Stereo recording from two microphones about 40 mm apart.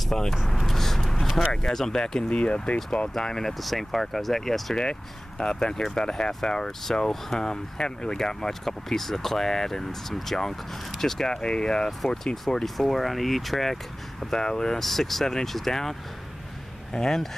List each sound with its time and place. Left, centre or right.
0.1 s speech: centre
0.6 s vehicle: centre
1.7 s speech: centre
2.2 s speech: left
3.2 s speech: centre
3.5 s speech: centre
5.4 s speech: left
11.4 s speech: left
12.6 s speech: centre
14.3 s speech: centre
14.8 s speech: centre